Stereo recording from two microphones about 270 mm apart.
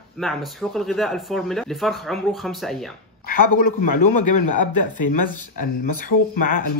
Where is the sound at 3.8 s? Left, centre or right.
Left.